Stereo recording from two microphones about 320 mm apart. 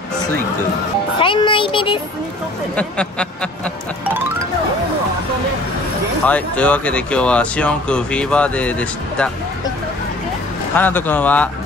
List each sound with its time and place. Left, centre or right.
1.2 s a child's voice: centre
2.7 s speech: centre
6.2 s speech: centre
10.8 s speech: centre